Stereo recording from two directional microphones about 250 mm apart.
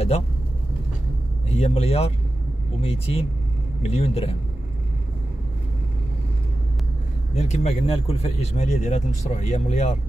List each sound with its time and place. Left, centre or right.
1.6 s speech: left
7.3 s speech: left